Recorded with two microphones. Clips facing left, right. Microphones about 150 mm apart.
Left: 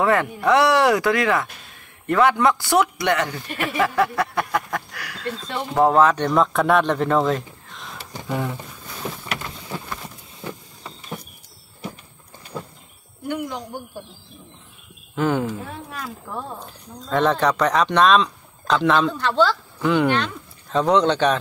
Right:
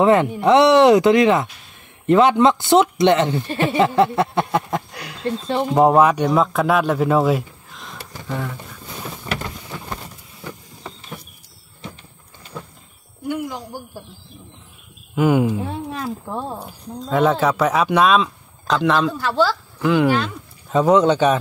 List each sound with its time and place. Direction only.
0.0 s speech: 20° right (ahead or behind); by 8.0 s centre (ahead or behind)
8.1 s speech: 20° left (ahead or behind)
9.0 s vehicle: 15° left (ahead or behind)
13.3 s speech: 5° right (ahead or behind)
15.1 s speech: 10° right (ahead or behind)
15.6 s speech: 25° right (ahead or behind)
16.5 s speech: 10° right (ahead or behind)